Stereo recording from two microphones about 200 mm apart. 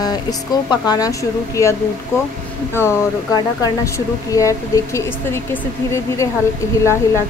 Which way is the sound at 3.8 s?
15° left (ahead or behind).